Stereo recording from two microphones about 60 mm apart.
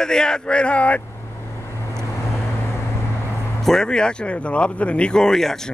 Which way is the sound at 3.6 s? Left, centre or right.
Centre.